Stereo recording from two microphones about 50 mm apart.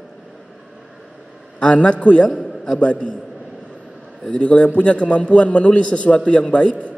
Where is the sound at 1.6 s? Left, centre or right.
Left.